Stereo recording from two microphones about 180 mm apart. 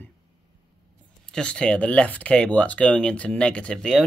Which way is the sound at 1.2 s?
5° left (ahead or behind).